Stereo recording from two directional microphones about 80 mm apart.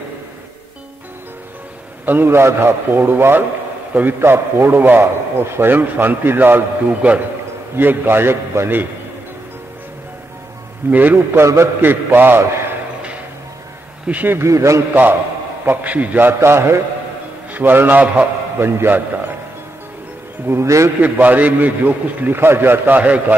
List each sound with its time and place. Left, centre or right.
2.0 s a man's voice: right
10.9 s a man's voice: right
11.4 s a man's voice: right
14.0 s a man's voice: right
14.5 s a man's voice: right
15.6 s a man's voice: right
20.4 s a man's voice: right
21.0 s a man's voice: right